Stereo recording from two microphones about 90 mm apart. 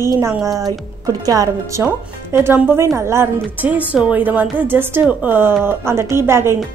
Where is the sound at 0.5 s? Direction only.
40° right (ahead or behind).